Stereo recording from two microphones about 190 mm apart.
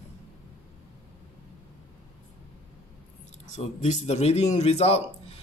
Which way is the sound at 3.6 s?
35° left (ahead or behind).